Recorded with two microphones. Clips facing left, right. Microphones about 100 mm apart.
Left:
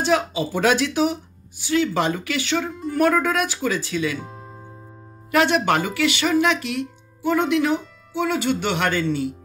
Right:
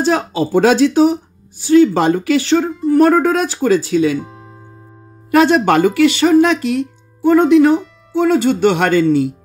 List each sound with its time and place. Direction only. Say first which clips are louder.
0.0 s speech: right 5 dB; 35° right (ahead or behind)
4.2 s music: right 6 dB; centre (ahead or behind)
5.3 s speech: right 7 dB; 40° right (ahead or behind)